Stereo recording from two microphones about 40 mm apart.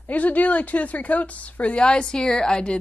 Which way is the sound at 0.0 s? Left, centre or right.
Left.